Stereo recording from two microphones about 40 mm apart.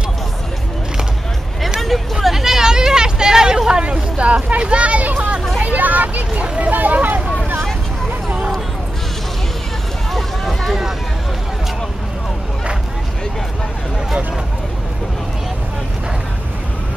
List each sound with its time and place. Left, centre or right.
1.9 s hubbub: centre
3.8 s a sound: right
5.0 s children playing: right
5.6 s a sound: right
6.6 s vehicle: right
10.1 s run: centre